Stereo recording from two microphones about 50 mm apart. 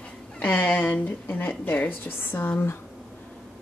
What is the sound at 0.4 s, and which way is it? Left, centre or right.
A woman's voice, left.